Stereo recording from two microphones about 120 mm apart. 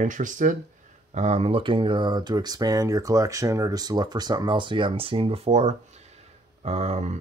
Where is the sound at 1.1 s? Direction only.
70° right (ahead or behind).